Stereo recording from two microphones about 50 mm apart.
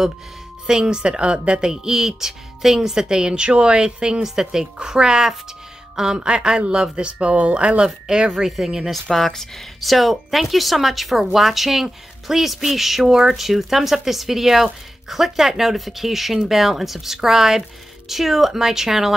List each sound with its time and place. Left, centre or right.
0.7 s speech: centre
9.1 s speech: centre